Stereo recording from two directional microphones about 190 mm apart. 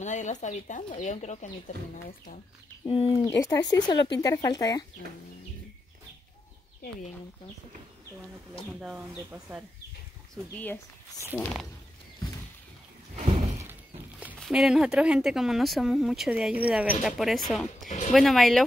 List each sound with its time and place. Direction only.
0.0 s speech: 40° left (ahead or behind)
2.8 s speech: 25° left (ahead or behind)
3.3 s speech: 15° left (ahead or behind)
9.3 s speech: 10° right (ahead or behind)
10.3 s speech: 10° left (ahead or behind)
14.2 s speech: centre (ahead or behind)
17.8 s speech: 40° left (ahead or behind)
18.1 s speech: centre (ahead or behind)